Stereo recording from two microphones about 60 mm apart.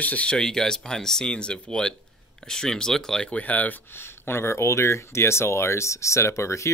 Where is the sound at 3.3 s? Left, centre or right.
Left.